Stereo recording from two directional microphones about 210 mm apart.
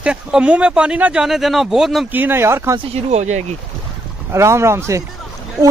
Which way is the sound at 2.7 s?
30° right (ahead or behind).